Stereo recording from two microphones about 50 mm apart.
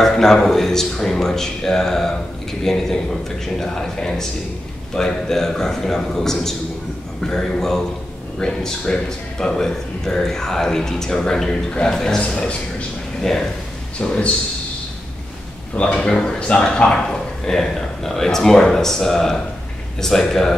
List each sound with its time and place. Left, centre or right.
0.0 s a man's voice: centre
12.2 s a man's voice: left
13.2 s a man's voice: centre
13.9 s a man's voice: centre
15.7 s a man's voice: left; by 20.5 s centre